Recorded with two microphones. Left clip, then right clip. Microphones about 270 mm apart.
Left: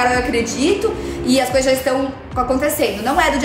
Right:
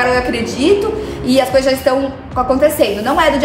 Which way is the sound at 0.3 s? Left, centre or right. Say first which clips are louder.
Right 4 dB; centre.